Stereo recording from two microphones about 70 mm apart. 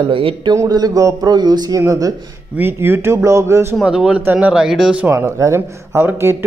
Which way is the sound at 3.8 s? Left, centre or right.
Centre.